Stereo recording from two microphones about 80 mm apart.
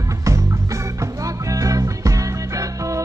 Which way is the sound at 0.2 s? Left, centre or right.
Right.